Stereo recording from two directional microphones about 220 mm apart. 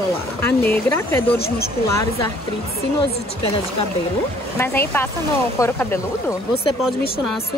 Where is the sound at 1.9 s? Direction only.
15° left (ahead or behind).